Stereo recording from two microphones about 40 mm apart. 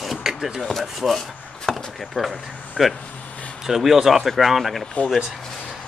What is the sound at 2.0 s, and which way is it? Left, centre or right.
Speech, centre.